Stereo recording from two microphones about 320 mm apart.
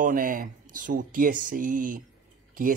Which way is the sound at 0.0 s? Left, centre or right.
Right.